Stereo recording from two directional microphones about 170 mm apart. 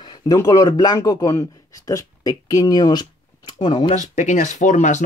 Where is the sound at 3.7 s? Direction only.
40° left (ahead or behind).